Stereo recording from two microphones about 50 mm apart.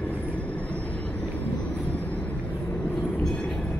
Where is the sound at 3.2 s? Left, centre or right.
Centre.